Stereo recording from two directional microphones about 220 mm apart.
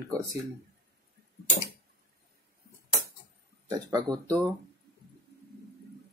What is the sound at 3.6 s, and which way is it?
Speech, 15° right (ahead or behind).